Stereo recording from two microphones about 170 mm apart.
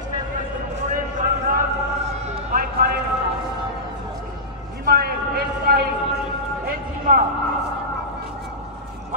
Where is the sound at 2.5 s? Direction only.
65° right (ahead or behind).